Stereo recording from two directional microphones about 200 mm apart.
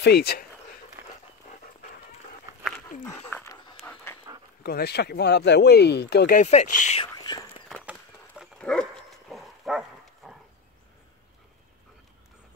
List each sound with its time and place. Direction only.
0.0 s speech: 50° left (ahead or behind)
3.3 s dog: 10° left (ahead or behind)
3.8 s pant: 10° left (ahead or behind)
4.6 s speech: 50° left (ahead or behind)
6.4 s speech: 35° left (ahead or behind)
7.2 s whispering: 20° left (ahead or behind)
8.4 s dog: 5° left (ahead or behind)